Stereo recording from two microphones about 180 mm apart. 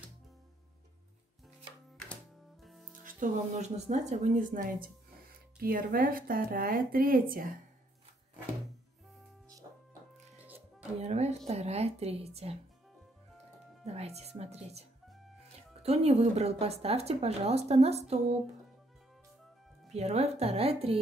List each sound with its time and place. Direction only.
2.6 s music: centre (ahead or behind)
3.2 s speech: 40° right (ahead or behind)
10.4 s music: 10° right (ahead or behind)
11.0 s a woman's voice: 40° right (ahead or behind)
13.8 s a woman's voice: 35° right (ahead or behind)
19.9 s a woman's voice: 35° right (ahead or behind)